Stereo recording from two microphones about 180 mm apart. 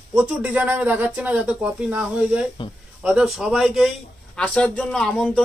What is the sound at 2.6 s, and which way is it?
Speech, 25° left (ahead or behind).